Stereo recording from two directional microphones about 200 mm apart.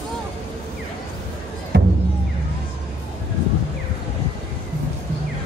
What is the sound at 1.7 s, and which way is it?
Music, 55° right (ahead or behind).